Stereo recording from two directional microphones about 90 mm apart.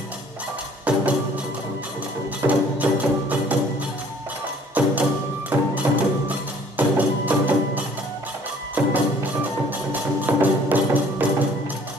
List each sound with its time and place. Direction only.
0.8 s music: 15° right (ahead or behind)
2.4 s music: 15° right (ahead or behind)
4.8 s music: 15° right (ahead or behind)